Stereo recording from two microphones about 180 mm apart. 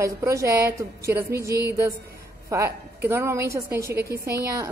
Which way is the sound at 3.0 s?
15° right (ahead or behind).